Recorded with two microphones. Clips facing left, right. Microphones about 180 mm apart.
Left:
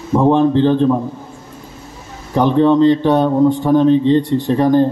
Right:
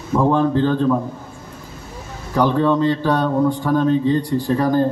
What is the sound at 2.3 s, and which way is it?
Speech, 20° left (ahead or behind).